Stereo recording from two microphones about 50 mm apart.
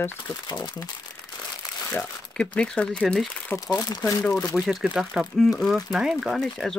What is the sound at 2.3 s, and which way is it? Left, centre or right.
Speech, centre.